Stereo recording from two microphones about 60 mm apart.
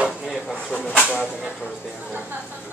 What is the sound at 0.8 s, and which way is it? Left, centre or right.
Speech, left.